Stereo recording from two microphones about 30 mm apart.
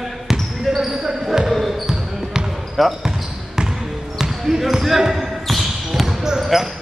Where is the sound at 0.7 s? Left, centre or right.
Centre.